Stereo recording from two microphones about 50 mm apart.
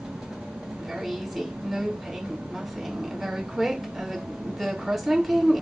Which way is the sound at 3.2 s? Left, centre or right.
Centre.